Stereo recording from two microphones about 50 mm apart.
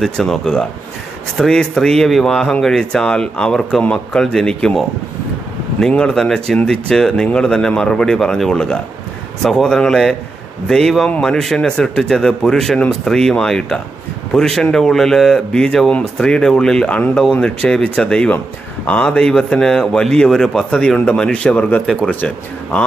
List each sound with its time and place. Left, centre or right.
0.0 s speech: centre
2.0 s speech: centre
2.3 s speech: centre
5.8 s speech: centre
16.8 s speech: left
17.1 s speech: centre
22.7 s speech: centre